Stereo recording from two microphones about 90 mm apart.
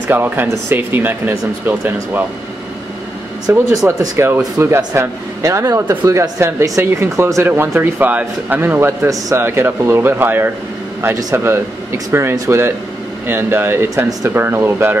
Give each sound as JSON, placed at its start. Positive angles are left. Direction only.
{"t": 0.1, "sound": "a man's voice", "side_deg": -25}
{"t": 3.4, "sound": "speech", "side_deg": -45}
{"t": 4.6, "sound": "a man's voice", "side_deg": -30}